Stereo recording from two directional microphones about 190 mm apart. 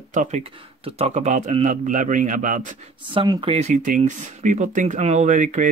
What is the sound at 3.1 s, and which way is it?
Speech, 25° right (ahead or behind).